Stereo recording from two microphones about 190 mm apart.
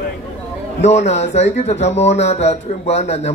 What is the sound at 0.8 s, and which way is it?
Speech, 35° left (ahead or behind).